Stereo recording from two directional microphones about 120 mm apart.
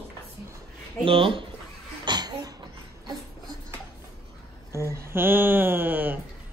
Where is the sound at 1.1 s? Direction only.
50° right (ahead or behind).